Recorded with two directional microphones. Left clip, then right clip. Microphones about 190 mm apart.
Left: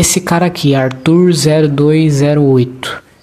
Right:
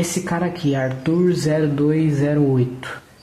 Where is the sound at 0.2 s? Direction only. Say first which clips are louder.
Left 10 dB; 25° left (ahead or behind).